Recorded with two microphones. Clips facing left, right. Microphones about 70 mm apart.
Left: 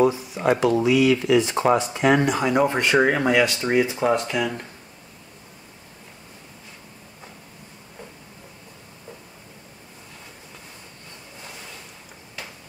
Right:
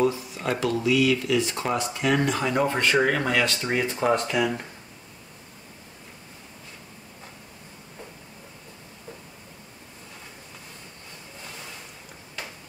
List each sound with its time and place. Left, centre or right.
0.0 s speech: centre